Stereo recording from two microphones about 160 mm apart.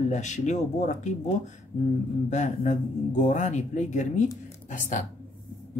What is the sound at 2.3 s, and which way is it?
Speech, 50° left (ahead or behind).